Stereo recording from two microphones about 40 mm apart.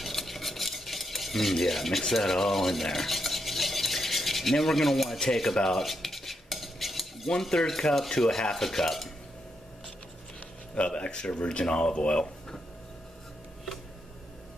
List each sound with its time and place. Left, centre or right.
0.0 s stir: centre
7.2 s stir: centre
10.7 s speech: left